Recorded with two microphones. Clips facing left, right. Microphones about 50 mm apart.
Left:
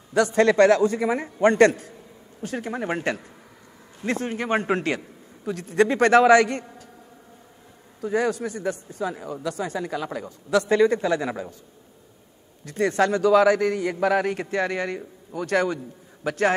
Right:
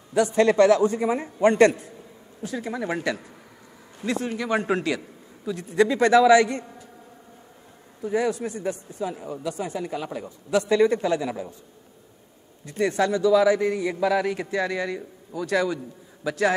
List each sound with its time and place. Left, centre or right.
0.1 s a man's voice: left
2.4 s a man's voice: left
8.0 s a man's voice: left
12.6 s a man's voice: left